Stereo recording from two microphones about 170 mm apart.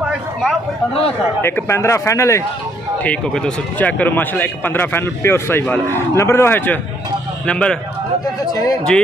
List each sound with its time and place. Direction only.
0.0 s a sound: 5° right (ahead or behind)
1.4 s speech: 15° left (ahead or behind)
3.0 s speech: 5° left (ahead or behind)
8.9 s speech: 5° left (ahead or behind)